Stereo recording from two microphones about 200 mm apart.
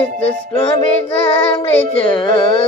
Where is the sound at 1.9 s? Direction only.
25° left (ahead or behind).